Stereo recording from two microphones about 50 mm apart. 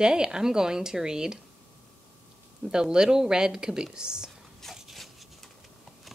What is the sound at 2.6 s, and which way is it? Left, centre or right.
A woman's voice, centre.